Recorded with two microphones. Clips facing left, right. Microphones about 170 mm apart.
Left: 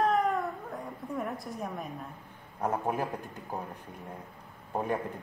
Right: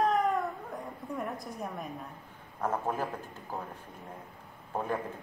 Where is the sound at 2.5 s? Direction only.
15° left (ahead or behind).